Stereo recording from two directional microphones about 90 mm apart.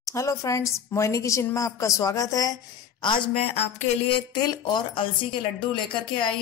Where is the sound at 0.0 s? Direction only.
35° left (ahead or behind).